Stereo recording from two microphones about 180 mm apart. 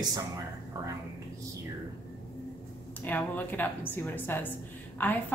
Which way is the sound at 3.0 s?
10° left (ahead or behind).